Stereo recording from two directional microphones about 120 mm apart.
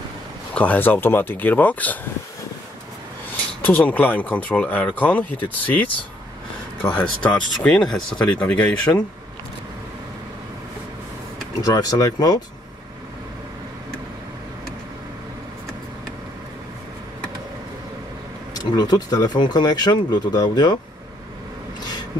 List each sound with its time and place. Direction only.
0.6 s speech: 15° left (ahead or behind)
3.6 s speech: 15° left (ahead or behind)
11.6 s speech: 30° left (ahead or behind)
18.5 s speech: 35° left (ahead or behind)